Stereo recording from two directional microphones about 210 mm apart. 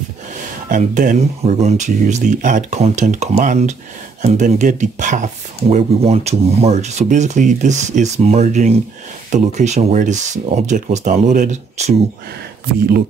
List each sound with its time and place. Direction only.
0.7 s speech: 40° right (ahead or behind)
12.8 s speech: 45° right (ahead or behind)